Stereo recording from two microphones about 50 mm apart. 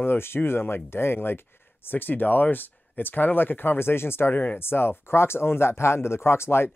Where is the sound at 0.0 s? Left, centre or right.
Left.